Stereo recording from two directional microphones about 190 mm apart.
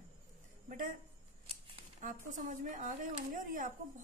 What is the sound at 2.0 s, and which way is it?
A woman's voice, 40° right (ahead or behind).